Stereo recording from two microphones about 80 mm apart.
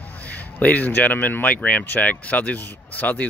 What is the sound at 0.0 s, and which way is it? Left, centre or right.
Speech, centre.